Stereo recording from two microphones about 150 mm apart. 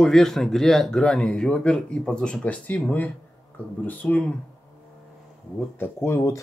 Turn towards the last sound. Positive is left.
turn(degrees=15)  # may be behind; listen again after turning